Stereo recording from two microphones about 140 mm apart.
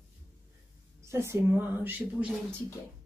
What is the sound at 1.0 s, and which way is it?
A woman's voice, 20° right (ahead or behind).